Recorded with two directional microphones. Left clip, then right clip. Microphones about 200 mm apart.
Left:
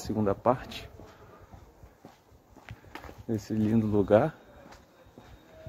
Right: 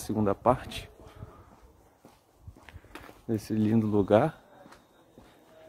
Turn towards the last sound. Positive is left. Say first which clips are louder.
# even
turn(degrees=-20)  # may be behind; listen again after turning